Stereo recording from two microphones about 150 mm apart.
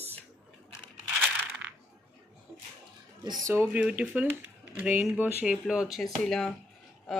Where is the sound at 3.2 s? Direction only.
30° right (ahead or behind).